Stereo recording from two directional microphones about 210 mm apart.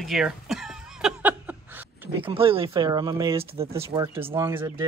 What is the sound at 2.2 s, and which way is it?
Speech, 25° right (ahead or behind).